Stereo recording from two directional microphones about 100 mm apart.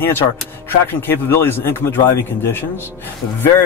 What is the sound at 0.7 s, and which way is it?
Speech, 25° left (ahead or behind).